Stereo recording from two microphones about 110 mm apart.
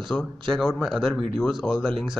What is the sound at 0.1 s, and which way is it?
Speech, 10° left (ahead or behind).